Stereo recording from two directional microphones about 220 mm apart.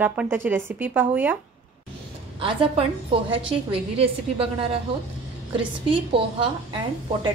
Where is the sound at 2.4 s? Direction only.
25° right (ahead or behind).